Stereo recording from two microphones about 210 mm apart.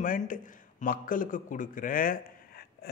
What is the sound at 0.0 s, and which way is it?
Speech, 40° left (ahead or behind).